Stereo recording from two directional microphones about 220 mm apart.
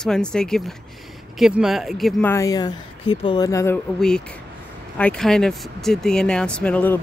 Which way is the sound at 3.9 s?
5° left (ahead or behind).